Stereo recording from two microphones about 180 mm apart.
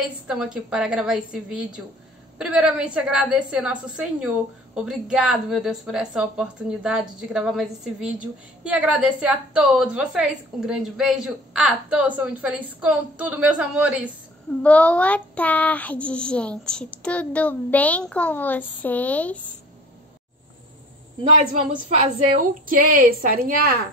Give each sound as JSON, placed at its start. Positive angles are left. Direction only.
{"t": 0.3, "sound": "a woman's voice", "side_deg": -5}
{"t": 14.6, "sound": "speech", "side_deg": 5}
{"t": 21.2, "sound": "a woman's voice", "side_deg": -35}